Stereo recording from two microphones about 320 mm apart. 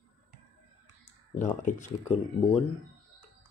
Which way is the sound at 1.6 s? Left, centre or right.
Left.